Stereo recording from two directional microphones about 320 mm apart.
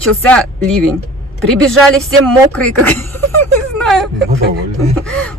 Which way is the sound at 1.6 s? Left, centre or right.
Centre.